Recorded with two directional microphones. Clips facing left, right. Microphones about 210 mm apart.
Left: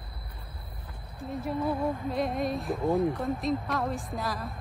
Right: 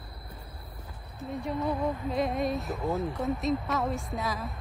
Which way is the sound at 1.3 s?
5° left (ahead or behind).